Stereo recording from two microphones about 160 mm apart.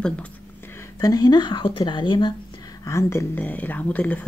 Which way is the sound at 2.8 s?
20° left (ahead or behind).